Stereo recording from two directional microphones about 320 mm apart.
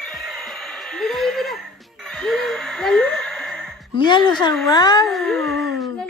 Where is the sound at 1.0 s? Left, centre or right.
Centre.